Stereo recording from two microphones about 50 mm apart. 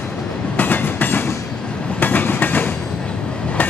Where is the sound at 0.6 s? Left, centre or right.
Left.